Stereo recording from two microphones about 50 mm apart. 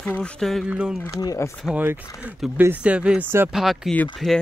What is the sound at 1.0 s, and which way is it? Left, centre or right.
Speech, left.